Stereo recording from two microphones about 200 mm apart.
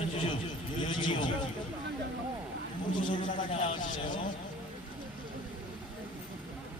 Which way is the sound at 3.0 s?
25° left (ahead or behind).